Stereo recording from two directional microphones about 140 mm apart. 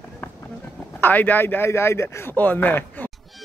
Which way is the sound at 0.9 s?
15° left (ahead or behind).